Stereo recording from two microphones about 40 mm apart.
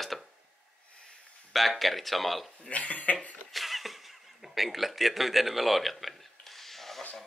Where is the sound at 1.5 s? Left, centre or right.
Centre.